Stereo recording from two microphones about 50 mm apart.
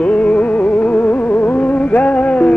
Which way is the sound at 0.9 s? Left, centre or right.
Left.